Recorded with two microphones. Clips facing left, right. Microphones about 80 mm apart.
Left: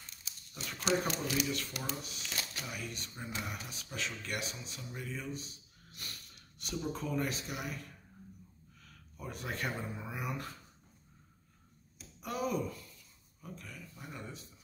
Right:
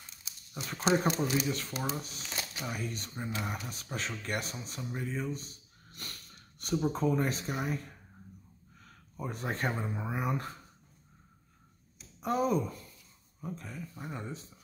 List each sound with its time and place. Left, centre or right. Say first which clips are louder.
0.7 s speech: right 5 dB; right
8.8 s speech: right 6 dB; right
12.2 s speech: right 6 dB; right